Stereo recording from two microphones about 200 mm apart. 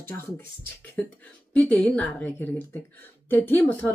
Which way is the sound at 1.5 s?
5° left (ahead or behind).